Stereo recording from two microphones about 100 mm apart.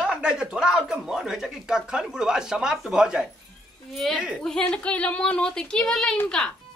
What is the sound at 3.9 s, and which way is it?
Speech, centre (ahead or behind).